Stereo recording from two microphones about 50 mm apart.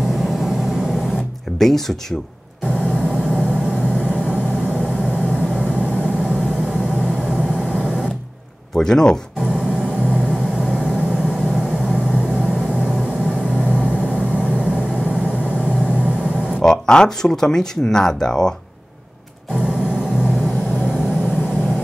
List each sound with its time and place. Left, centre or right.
0.0 s vehicle: centre
1.6 s speech: centre
2.6 s vehicle: centre
6.6 s a sound: centre
8.7 s speech: centre
9.4 s vehicle: centre
16.8 s speech: centre
19.5 s music: centre
20.8 s vehicle: left